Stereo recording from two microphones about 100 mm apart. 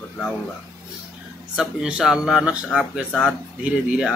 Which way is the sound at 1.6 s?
10° right (ahead or behind).